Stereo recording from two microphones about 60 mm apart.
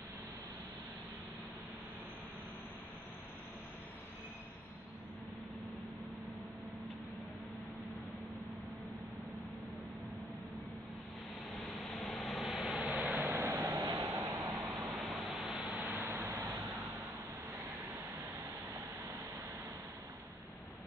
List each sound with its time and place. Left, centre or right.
11.5 s vehicle: centre
12.8 s a sound: right
14.5 s vehicle: centre
15.8 s vehicle: right